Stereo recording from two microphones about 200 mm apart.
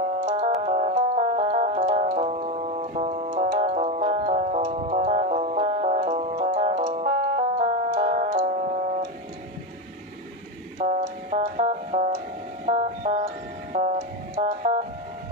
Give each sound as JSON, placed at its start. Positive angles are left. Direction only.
{"t": 0.2, "sound": "music", "side_deg": -30}
{"t": 10.8, "sound": "music", "side_deg": -35}
{"t": 12.6, "sound": "a sound", "side_deg": -35}
{"t": 13.7, "sound": "music", "side_deg": -35}